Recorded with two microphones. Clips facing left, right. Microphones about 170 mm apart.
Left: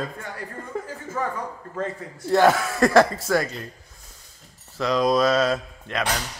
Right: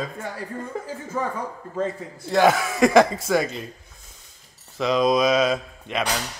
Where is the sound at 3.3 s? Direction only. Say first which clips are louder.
Right 1 dB; 20° right (ahead or behind).